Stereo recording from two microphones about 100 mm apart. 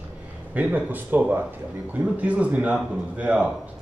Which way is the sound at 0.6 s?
15° right (ahead or behind).